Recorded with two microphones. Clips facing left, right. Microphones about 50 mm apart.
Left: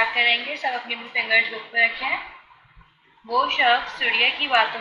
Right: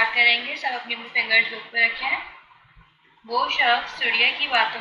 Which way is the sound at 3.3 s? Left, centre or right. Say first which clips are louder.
Left 1 dB; left.